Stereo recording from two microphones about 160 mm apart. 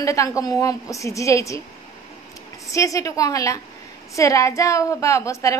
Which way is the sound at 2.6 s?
20° left (ahead or behind).